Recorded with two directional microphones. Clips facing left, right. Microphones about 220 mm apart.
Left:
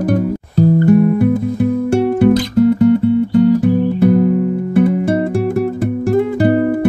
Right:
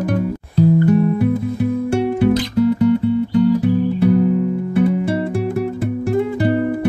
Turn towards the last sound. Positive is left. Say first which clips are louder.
# left 4 dB
turn(degrees=45)  # may be behind; listen again after turning